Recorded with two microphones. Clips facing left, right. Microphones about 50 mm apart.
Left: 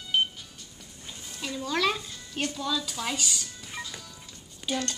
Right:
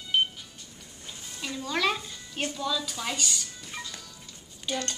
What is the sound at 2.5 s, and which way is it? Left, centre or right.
A child's voice, centre.